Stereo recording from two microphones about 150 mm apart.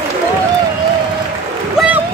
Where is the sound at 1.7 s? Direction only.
5° right (ahead or behind).